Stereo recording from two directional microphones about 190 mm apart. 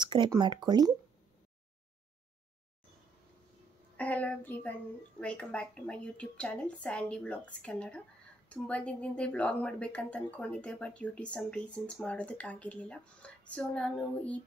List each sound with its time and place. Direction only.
0.0 s speech: 25° right (ahead or behind)
3.9 s a woman's voice: 10° left (ahead or behind)